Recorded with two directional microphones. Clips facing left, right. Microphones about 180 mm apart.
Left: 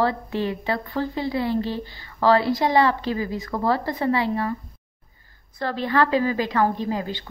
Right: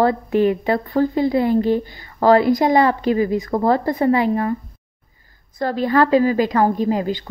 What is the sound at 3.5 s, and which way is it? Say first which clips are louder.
Speech: right 6 dB; 45° right (ahead or behind).